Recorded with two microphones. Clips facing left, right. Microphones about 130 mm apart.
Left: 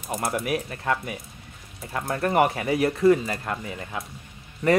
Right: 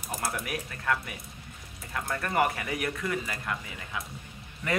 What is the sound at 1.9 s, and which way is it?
Speech, 30° left (ahead or behind).